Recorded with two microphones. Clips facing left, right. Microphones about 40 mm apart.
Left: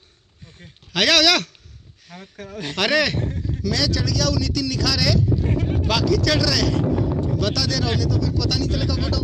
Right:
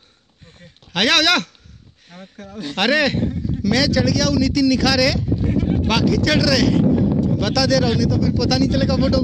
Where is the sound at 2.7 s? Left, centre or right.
Right.